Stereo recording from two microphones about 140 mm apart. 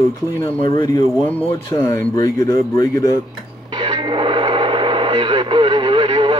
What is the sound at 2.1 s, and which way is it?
Speech, 30° left (ahead or behind).